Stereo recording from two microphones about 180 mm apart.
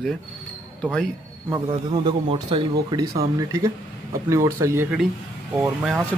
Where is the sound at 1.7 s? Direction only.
30° right (ahead or behind).